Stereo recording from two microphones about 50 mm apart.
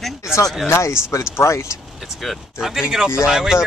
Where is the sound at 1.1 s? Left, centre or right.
Left.